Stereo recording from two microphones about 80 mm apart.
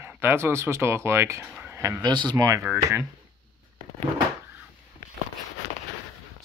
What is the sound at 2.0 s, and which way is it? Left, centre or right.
Speech, right.